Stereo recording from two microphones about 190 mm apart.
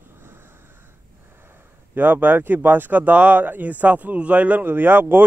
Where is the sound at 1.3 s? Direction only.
10° right (ahead or behind).